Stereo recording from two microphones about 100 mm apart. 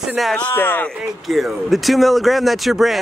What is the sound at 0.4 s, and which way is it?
Speech, 20° left (ahead or behind).